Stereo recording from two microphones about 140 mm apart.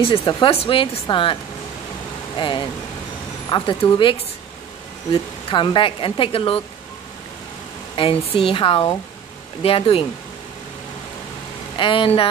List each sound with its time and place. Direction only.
0.0 s speech: 40° left (ahead or behind)
7.9 s speech: 40° left (ahead or behind)
11.7 s speech: 35° left (ahead or behind)